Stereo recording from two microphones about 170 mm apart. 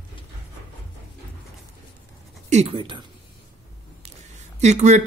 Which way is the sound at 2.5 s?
35° right (ahead or behind).